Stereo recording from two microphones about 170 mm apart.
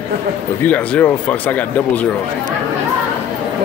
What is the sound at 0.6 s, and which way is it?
Speech, 10° left (ahead or behind).